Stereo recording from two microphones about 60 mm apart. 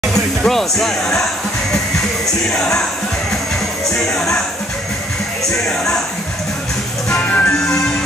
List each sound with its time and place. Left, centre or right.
0.1 s music: centre
2.5 s speech: centre
3.9 s music: centre
5.5 s speech: centre
7.2 s music: left